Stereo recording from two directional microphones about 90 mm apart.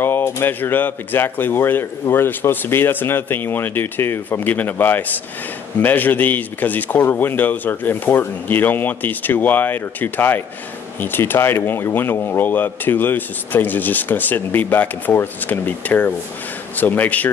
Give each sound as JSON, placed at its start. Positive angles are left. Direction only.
{"t": 0.0, "sound": "speech", "side_deg": 25}